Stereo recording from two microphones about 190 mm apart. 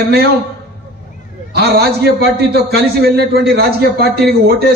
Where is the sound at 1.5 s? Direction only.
60° right (ahead or behind).